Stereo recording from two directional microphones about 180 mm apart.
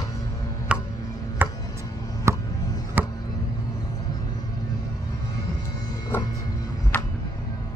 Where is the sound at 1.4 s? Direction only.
10° right (ahead or behind).